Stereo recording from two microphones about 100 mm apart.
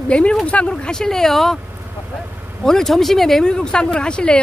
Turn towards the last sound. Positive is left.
turn(degrees=10)  # may be behind; listen again after turning